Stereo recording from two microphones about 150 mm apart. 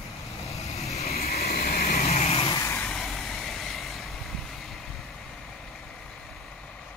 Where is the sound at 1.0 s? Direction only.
45° left (ahead or behind).